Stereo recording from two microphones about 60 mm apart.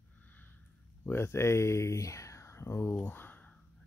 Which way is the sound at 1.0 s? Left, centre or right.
Left.